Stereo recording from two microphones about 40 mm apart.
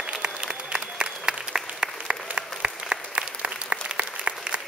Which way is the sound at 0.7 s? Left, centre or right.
Centre.